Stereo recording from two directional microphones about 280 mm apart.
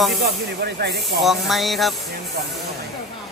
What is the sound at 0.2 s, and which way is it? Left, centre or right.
Speech, right.